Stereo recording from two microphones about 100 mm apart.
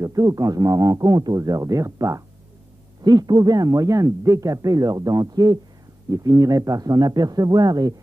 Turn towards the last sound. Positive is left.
turn(degrees=-40)  # may be behind; listen again after turning